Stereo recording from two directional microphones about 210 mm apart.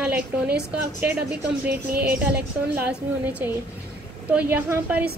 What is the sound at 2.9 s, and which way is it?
Speech, 5° right (ahead or behind).